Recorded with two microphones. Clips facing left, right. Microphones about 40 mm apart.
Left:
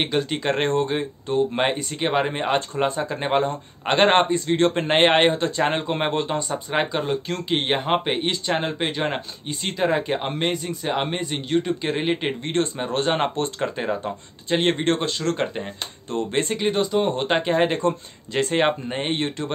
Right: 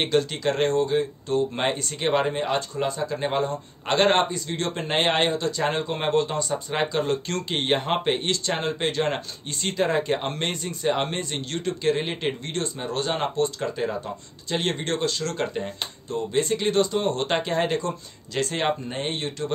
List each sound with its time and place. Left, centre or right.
0.0 s speech: centre
0.4 s a man's voice: left
1.3 s speech: centre
2.3 s a man's voice: left
12.4 s a man's voice: left
15.4 s speech: left
16.1 s speech: left
16.5 s speech: centre; by 19.5 s left